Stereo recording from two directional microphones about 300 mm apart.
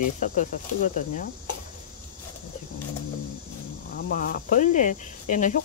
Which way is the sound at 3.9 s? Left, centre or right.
Left.